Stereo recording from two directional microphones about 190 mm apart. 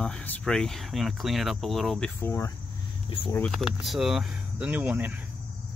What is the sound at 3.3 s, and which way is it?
Speech, 5° left (ahead or behind).